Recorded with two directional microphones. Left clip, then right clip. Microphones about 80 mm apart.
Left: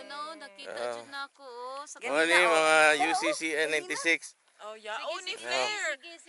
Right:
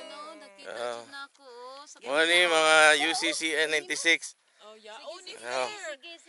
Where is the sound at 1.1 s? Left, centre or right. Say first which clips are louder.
Left 3 dB; left.